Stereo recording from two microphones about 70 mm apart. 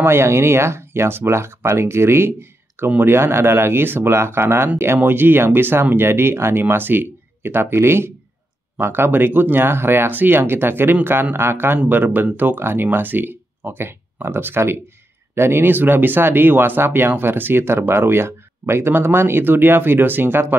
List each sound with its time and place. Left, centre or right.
0.0 s speech: right